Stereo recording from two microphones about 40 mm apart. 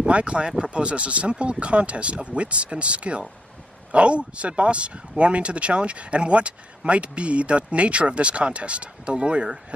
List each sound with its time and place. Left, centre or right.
0.0 s speech: right